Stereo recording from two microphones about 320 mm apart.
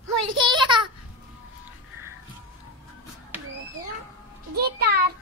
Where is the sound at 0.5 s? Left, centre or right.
Centre.